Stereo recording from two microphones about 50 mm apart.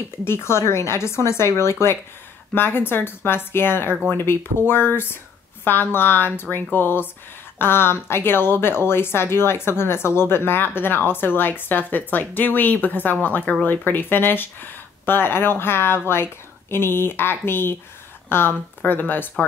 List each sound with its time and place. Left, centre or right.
0.2 s speech: left
2.5 s speech: left